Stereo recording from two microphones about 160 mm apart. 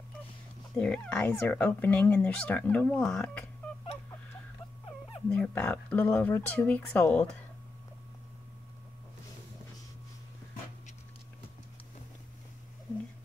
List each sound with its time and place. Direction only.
0.7 s speech: 5° left (ahead or behind)
5.3 s speech: 5° left (ahead or behind)